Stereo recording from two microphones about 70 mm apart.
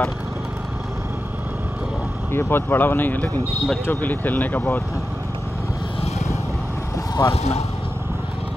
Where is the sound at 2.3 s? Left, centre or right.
Left.